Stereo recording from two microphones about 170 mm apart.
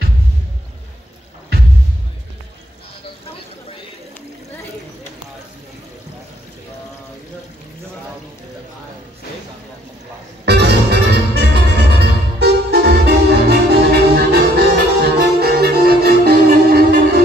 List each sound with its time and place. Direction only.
10.4 s music: 80° right